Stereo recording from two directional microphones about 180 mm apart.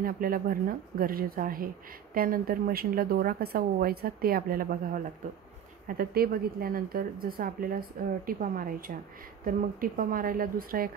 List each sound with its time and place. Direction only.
0.0 s a woman's voice: 55° right (ahead or behind)